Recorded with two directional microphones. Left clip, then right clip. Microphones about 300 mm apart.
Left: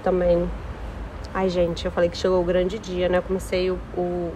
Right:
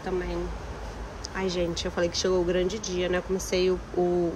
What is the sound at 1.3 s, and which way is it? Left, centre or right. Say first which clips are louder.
A woman's voice: left 7 dB; centre.